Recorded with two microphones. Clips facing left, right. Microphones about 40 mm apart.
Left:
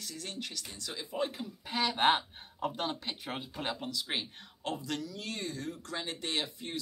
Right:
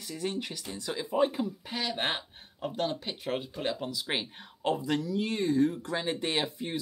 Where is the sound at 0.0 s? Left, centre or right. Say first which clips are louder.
Right 7 dB; centre.